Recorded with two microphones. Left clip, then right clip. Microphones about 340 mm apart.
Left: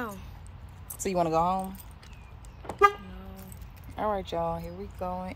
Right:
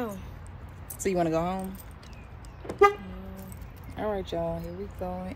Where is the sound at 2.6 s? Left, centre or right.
Centre.